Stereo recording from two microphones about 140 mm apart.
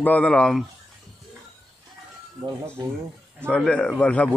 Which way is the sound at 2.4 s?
35° right (ahead or behind).